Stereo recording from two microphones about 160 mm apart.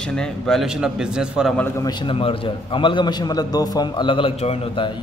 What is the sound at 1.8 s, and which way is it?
A man's voice, 35° left (ahead or behind).